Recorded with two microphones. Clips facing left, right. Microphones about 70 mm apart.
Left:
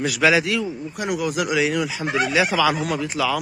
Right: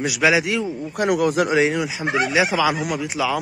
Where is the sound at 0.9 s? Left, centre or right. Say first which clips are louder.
Right 6 dB; right.